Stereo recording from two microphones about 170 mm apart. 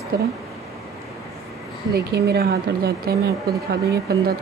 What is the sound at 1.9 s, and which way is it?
A woman's voice, 70° right (ahead or behind).